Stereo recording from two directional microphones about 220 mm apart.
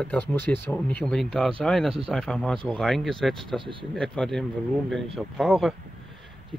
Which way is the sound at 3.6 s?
20° right (ahead or behind).